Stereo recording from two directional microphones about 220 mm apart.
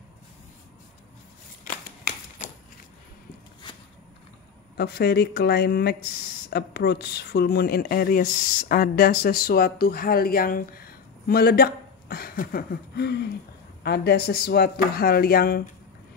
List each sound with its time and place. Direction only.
4.7 s speech: 45° left (ahead or behind)